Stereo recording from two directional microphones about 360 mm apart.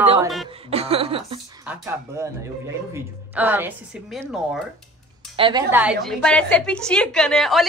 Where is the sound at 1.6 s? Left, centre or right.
Centre.